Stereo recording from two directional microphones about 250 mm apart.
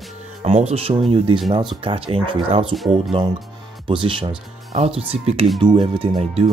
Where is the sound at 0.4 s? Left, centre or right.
Right.